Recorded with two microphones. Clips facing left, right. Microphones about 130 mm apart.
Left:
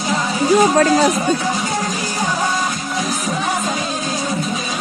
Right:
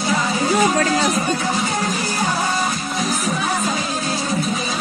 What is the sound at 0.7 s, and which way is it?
Speech, 45° left (ahead or behind).